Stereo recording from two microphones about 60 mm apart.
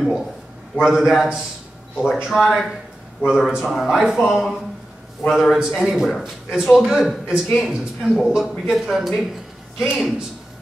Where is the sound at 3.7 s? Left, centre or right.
Centre.